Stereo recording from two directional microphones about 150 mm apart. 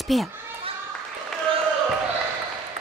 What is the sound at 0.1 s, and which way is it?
Speech, centre (ahead or behind).